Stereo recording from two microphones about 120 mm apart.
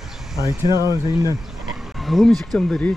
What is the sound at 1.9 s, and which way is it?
Speech, centre (ahead or behind).